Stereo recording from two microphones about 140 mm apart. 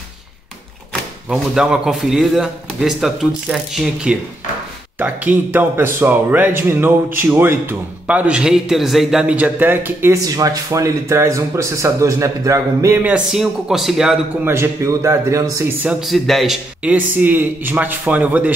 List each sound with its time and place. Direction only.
1.3 s a man's voice: 5° right (ahead or behind)
14.4 s a man's voice: 20° right (ahead or behind)
15.9 s a man's voice: centre (ahead or behind)